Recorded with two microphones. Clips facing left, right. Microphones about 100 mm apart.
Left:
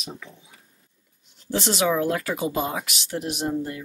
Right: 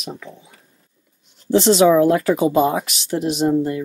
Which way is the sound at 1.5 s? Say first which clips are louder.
Right 10 dB; 25° right (ahead or behind).